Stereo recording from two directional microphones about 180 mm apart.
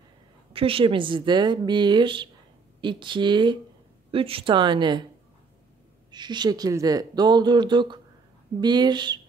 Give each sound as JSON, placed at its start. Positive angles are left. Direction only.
{"t": 0.5, "sound": "speech", "side_deg": -30}
{"t": 6.1, "sound": "speech", "side_deg": -25}